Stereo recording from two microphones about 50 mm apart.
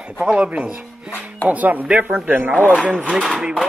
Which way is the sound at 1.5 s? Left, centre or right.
Right.